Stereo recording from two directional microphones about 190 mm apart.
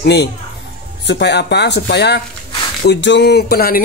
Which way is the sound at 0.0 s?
60° left (ahead or behind).